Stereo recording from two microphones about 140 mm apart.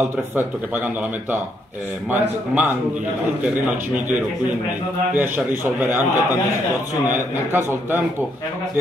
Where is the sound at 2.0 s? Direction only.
15° right (ahead or behind).